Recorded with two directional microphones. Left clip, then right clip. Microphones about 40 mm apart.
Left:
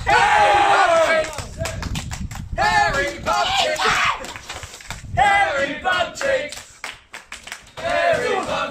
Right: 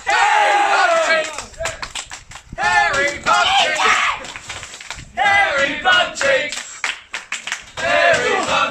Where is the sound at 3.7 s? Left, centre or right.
Centre.